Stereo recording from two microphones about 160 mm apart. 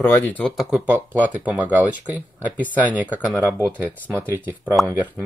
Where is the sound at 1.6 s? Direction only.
10° right (ahead or behind).